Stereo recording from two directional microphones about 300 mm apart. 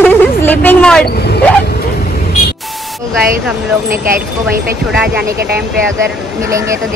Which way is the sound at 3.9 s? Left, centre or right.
Right.